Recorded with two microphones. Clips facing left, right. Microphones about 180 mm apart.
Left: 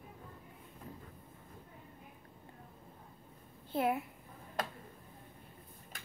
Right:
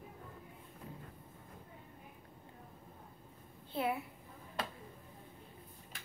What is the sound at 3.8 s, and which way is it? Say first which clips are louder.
Speech: left 3 dB; 45° left (ahead or behind).